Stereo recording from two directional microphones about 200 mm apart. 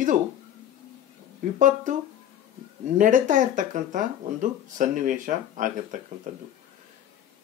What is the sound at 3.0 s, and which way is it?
Speech, 40° right (ahead or behind).